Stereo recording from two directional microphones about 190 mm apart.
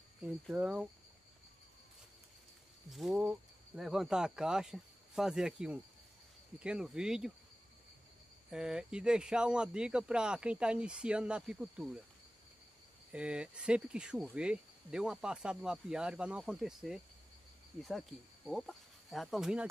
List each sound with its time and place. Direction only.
0.5 s speech: 5° right (ahead or behind)
2.9 s speech: centre (ahead or behind)
8.5 s speech: 5° right (ahead or behind)
13.1 s speech: 5° right (ahead or behind)